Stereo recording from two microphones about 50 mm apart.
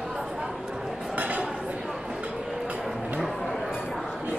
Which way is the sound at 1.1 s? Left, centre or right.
Right.